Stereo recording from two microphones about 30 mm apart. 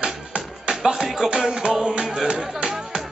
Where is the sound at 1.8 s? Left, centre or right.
Right.